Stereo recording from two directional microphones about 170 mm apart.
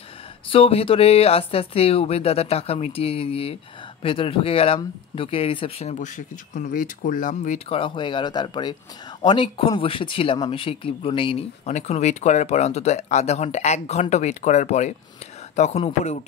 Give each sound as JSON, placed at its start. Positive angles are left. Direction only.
{"t": 0.5, "sound": "speech", "side_deg": 35}
{"t": 7.7, "sound": "speech", "side_deg": 30}